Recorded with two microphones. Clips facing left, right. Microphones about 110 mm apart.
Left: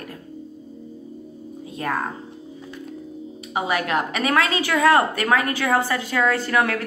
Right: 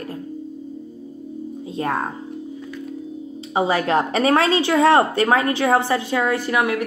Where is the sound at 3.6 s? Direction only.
30° right (ahead or behind).